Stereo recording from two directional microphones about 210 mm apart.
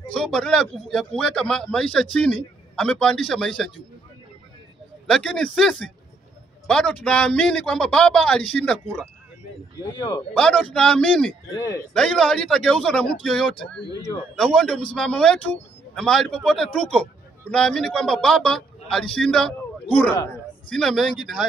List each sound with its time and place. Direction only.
0.1 s a man's voice: 5° left (ahead or behind)
5.0 s a man's voice: 5° left (ahead or behind)
9.8 s speech: 15° left (ahead or behind)
10.3 s a man's voice: 5° left (ahead or behind)